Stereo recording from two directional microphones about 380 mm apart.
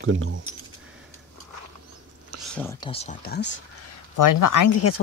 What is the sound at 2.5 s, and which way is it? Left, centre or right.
Speech, centre.